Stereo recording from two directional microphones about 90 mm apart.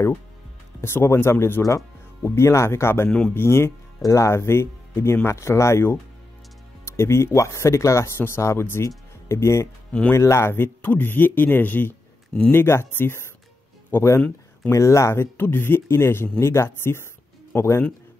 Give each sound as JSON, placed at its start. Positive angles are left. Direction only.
{"t": 0.7, "sound": "speech", "side_deg": 30}
{"t": 3.1, "sound": "speech", "side_deg": 10}
{"t": 3.3, "sound": "speech", "side_deg": 30}